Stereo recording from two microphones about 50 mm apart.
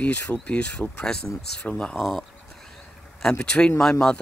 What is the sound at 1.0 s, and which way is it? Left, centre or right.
Speech, centre.